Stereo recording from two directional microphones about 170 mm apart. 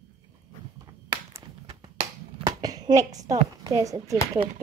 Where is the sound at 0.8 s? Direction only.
15° right (ahead or behind).